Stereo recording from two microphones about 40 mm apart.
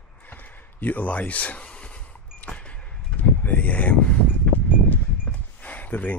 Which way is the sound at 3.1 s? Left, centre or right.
Left.